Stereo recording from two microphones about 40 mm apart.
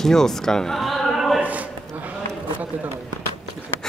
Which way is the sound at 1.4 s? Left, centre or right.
Right.